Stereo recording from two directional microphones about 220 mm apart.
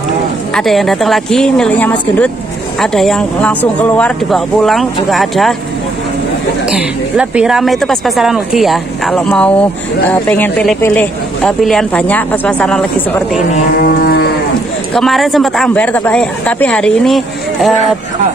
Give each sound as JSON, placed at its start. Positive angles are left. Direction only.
{"t": 0.6, "sound": "speech", "side_deg": 0}
{"t": 6.7, "sound": "speech", "side_deg": -5}
{"t": 13.8, "sound": "cattle", "side_deg": 45}
{"t": 15.0, "sound": "speech", "side_deg": 0}